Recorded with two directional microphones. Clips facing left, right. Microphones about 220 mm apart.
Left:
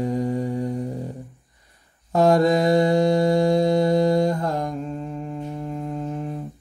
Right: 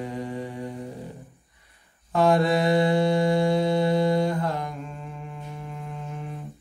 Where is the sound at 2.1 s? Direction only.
40° left (ahead or behind).